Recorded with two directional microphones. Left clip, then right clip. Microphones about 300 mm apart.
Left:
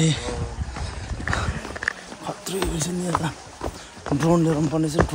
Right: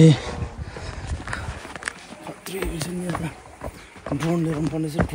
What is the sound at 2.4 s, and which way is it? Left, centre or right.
Speech, centre.